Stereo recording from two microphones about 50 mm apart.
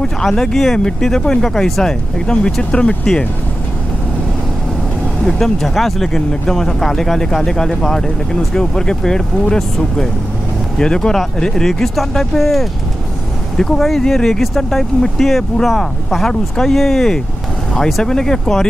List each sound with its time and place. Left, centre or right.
0.0 s speech: centre
5.2 s speech: centre